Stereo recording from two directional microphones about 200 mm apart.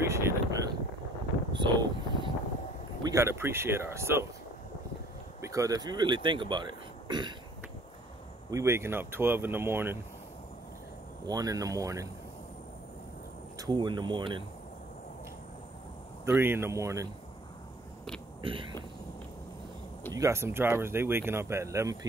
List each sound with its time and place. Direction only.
0.0 s a sound: 15° right (ahead or behind)
1.5 s wind noise: 25° right (ahead or behind)
3.1 s speech: 15° right (ahead or behind)
5.4 s speech: 15° right (ahead or behind)
8.5 s speech: 15° right (ahead or behind)
11.2 s speech: 20° right (ahead or behind)
13.6 s speech: 20° right (ahead or behind)
16.3 s speech: 10° right (ahead or behind)
18.4 s speech: 25° right (ahead or behind)
20.1 s speech: 15° right (ahead or behind)